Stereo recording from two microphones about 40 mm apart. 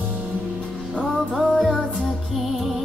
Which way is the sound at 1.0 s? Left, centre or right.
Left.